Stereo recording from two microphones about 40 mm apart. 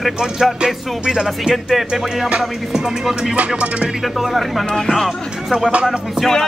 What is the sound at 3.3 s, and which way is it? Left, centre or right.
Speech, right.